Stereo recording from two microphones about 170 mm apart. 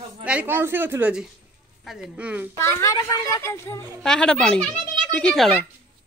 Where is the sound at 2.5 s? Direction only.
15° left (ahead or behind).